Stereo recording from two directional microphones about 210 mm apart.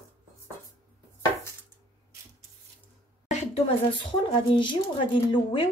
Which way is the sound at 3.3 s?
35° left (ahead or behind).